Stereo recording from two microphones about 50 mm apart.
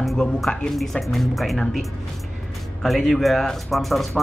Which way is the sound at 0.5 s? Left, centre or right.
Centre.